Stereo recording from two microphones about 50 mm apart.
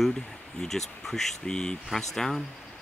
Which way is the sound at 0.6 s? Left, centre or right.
Centre.